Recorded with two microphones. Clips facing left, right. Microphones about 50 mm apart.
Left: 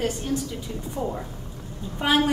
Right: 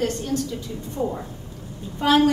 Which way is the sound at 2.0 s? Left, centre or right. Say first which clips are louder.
Right 3 dB; centre.